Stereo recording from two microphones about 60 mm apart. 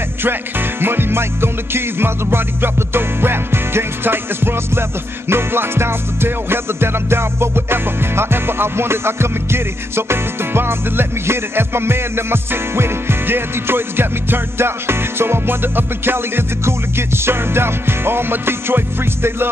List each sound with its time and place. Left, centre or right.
0.2 s music: right